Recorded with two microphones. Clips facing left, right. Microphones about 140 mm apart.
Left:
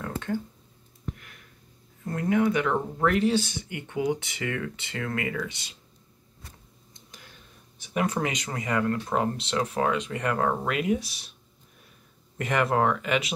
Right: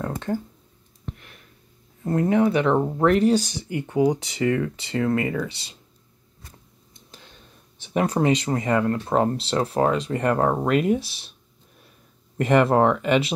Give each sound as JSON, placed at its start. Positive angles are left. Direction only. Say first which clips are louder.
{"t": 0.0, "sound": "a sound", "louder": "right 4 dB", "side_deg": -35}
{"t": 2.0, "sound": "speech", "louder": "right 4 dB", "side_deg": -30}
{"t": 7.8, "sound": "speech", "louder": "right 6 dB", "side_deg": -30}
{"t": 12.4, "sound": "speech", "louder": "right 7 dB", "side_deg": -30}